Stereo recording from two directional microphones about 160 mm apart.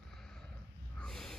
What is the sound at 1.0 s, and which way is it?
Snort, 5° left (ahead or behind).